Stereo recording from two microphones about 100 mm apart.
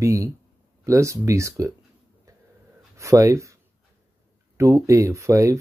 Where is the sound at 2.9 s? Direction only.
30° right (ahead or behind).